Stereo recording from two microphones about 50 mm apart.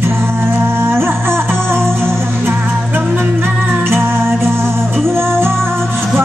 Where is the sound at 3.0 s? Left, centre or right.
Right.